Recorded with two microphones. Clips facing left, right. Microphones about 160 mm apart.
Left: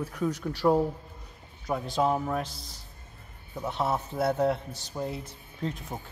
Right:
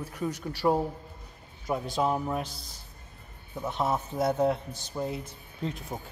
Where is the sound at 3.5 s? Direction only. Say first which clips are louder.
Even; centre (ahead or behind).